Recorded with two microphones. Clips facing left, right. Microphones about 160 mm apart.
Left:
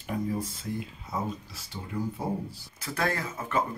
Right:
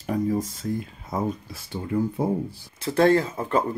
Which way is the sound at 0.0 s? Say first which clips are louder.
Right 6 dB; 40° right (ahead or behind).